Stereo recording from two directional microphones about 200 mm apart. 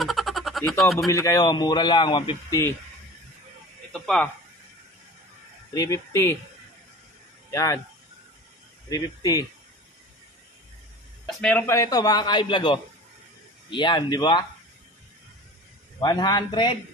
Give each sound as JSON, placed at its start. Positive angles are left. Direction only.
{"t": 0.0, "sound": "a sound", "side_deg": 0}
{"t": 0.9, "sound": "a man's voice", "side_deg": 15}
{"t": 3.9, "sound": "speech", "side_deg": 5}
{"t": 5.7, "sound": "speech", "side_deg": 15}
{"t": 7.5, "sound": "speech", "side_deg": 15}
{"t": 8.9, "sound": "speech", "side_deg": 20}
{"t": 11.2, "sound": "a man's voice", "side_deg": 10}
{"t": 16.0, "sound": "a man's voice", "side_deg": 20}